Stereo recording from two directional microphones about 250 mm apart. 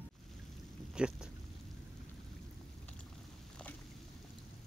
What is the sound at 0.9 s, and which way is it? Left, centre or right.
Speech, centre.